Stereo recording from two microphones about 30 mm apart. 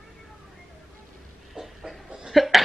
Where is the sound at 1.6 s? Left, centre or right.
Right.